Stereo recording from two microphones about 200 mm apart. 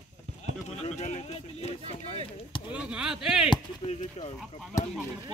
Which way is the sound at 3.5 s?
30° left (ahead or behind).